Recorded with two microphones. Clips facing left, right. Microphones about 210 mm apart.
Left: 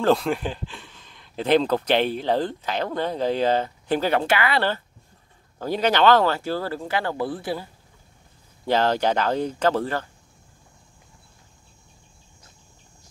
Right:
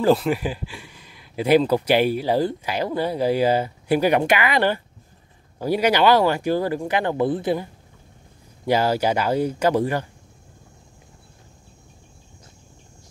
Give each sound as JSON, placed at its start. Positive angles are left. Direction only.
{"t": 0.0, "sound": "speech", "side_deg": -5}
{"t": 8.6, "sound": "speech", "side_deg": -10}